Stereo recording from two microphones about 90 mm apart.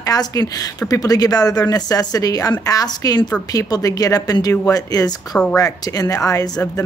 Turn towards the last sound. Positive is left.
turn(degrees=40)  # may be behind; listen again after turning